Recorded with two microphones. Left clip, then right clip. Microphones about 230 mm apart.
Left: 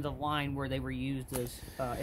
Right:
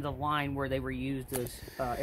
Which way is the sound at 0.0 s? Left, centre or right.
Left.